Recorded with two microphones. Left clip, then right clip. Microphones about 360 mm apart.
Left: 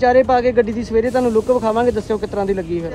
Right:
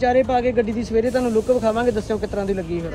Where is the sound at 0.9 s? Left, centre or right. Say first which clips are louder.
Left 4 dB; centre.